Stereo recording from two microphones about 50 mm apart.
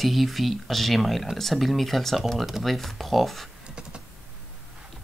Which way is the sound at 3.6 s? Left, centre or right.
Centre.